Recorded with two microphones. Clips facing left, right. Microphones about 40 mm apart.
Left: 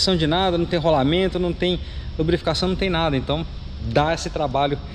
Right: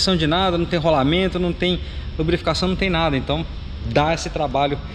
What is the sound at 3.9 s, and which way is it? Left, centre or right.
Speech, right.